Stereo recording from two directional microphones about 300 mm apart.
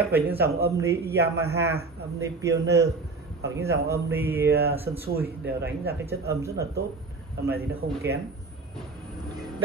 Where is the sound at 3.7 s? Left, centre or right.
Right.